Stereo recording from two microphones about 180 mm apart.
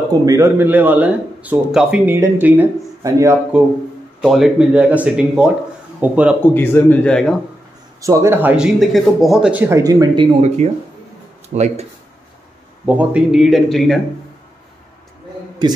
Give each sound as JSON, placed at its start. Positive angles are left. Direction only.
{"t": 0.1, "sound": "speech", "side_deg": -20}
{"t": 4.2, "sound": "speech", "side_deg": 0}
{"t": 6.5, "sound": "a man's voice", "side_deg": 10}
{"t": 8.0, "sound": "speech", "side_deg": -15}
{"t": 8.7, "sound": "speech", "side_deg": 0}
{"t": 11.5, "sound": "speech", "side_deg": -40}
{"t": 12.8, "sound": "speech", "side_deg": -5}